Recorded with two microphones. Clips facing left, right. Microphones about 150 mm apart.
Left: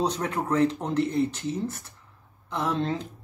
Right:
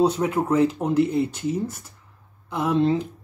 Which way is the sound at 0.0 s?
10° right (ahead or behind).